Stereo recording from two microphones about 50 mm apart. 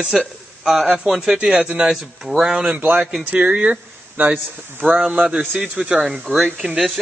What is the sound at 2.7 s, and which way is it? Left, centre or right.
Speech, right.